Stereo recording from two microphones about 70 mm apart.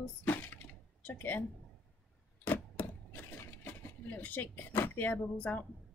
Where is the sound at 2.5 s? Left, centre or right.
Left.